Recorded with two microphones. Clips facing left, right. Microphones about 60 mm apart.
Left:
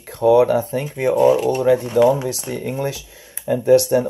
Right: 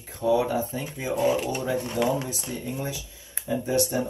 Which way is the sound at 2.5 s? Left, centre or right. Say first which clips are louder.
Left 7 dB; left.